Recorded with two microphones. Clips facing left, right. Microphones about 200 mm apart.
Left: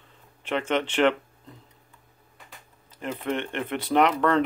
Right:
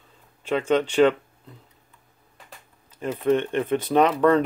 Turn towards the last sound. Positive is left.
turn(degrees=-15)  # may be behind; listen again after turning